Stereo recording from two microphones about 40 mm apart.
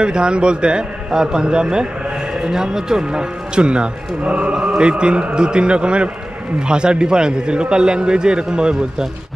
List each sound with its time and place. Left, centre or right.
0.0 s speech: right